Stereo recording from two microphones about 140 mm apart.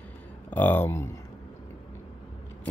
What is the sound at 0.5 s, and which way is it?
Speech, 15° left (ahead or behind).